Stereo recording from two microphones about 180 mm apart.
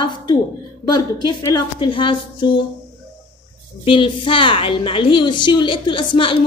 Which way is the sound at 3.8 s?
30° left (ahead or behind).